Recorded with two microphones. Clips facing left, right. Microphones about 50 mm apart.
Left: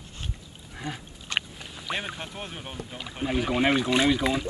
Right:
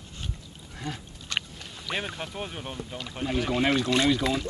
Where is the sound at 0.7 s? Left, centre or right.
Centre.